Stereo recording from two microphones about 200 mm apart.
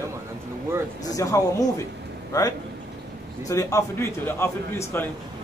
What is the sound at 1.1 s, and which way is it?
A man's voice, 15° left (ahead or behind).